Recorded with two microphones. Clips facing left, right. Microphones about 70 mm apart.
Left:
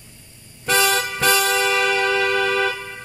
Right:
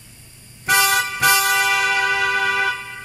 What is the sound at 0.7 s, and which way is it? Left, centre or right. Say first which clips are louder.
Vehicle horn: right 1 dB; centre.